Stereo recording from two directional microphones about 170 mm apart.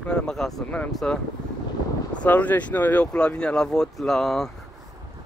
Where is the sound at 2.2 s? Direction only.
10° left (ahead or behind).